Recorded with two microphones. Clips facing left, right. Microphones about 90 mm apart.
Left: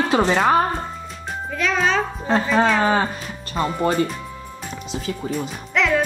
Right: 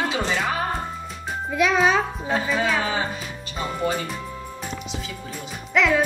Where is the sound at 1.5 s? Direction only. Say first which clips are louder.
Right 2 dB; 10° right (ahead or behind).